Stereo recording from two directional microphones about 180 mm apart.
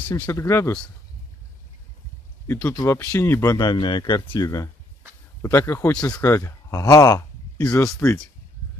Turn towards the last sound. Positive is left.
turn(degrees=15)  # may be behind; listen again after turning